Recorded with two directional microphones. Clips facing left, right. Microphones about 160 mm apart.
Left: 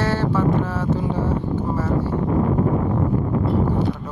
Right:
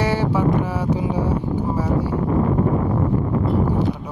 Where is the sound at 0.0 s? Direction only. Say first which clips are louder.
Right 1 dB; 15° right (ahead or behind).